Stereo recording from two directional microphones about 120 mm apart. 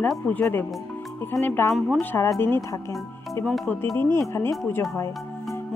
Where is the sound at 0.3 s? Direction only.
15° left (ahead or behind).